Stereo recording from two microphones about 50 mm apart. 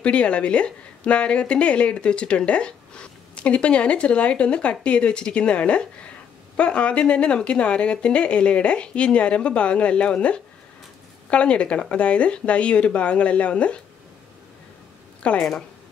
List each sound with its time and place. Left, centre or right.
0.0 s speech: left
15.2 s speech: left